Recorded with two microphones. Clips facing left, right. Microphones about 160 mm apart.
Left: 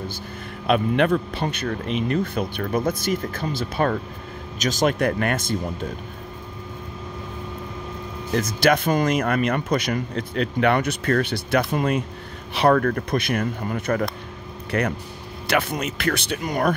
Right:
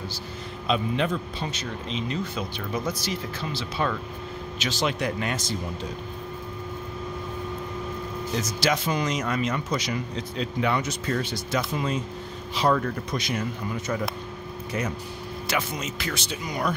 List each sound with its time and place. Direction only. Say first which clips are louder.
0.7 s speech: left 6 dB; 60° left (ahead or behind)
8.4 s speech: left 7 dB; 55° left (ahead or behind)